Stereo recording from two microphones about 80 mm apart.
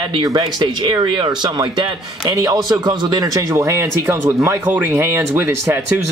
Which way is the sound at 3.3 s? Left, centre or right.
Right.